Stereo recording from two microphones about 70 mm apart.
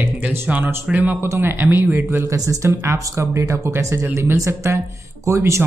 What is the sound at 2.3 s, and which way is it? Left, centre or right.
Speech, right.